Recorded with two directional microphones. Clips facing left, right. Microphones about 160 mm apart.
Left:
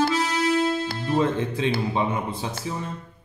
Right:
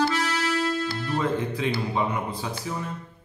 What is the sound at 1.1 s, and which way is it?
Speech, 20° left (ahead or behind).